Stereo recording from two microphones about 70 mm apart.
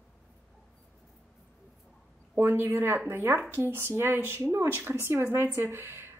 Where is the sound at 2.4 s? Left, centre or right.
Right.